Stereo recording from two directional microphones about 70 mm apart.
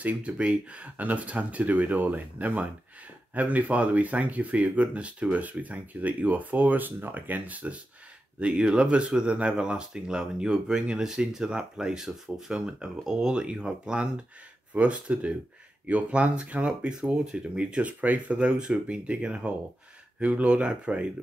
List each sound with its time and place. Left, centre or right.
0.0 s speech: centre